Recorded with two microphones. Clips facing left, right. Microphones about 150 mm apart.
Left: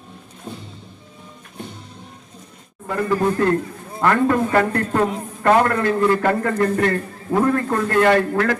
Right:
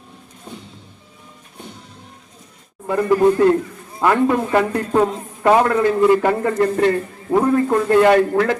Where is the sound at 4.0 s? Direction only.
15° right (ahead or behind).